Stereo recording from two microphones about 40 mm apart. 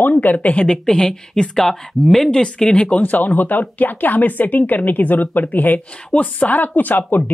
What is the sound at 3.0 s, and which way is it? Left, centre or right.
A woman's voice, left.